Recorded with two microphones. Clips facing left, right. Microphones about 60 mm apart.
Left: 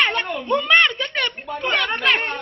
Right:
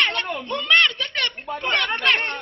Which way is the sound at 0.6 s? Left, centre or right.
Centre.